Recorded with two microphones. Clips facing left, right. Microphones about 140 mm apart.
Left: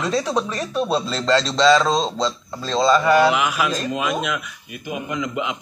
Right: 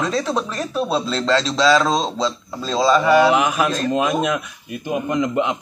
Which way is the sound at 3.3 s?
35° right (ahead or behind).